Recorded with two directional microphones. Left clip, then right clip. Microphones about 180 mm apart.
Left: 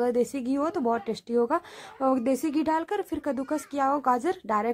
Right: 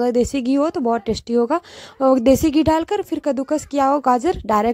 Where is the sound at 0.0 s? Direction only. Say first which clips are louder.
Right 7 dB; 40° right (ahead or behind).